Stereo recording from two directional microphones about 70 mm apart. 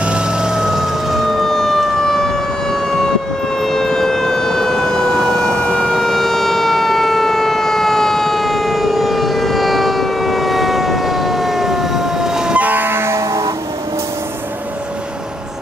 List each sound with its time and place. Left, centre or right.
0.0 s emergency vehicle: centre
5.5 s siren: right
5.8 s siren: centre
12.5 s train: right